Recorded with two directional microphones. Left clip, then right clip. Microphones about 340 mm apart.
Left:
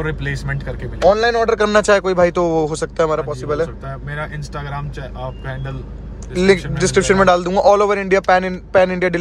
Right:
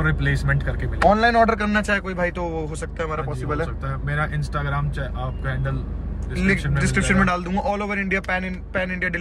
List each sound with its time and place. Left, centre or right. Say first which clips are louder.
0.0 s speech: even; centre
6.3 s speech: left 8 dB; centre